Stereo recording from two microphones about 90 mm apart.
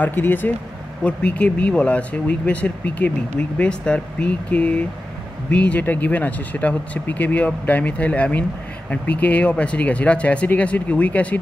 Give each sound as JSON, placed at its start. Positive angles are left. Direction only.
{"t": 0.0, "sound": "speech", "side_deg": 20}